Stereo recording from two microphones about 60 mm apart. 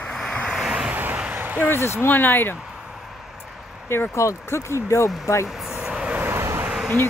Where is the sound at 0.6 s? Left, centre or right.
Centre.